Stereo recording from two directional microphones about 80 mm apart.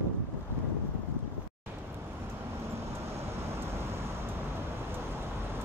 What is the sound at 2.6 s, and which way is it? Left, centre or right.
Vehicle, right.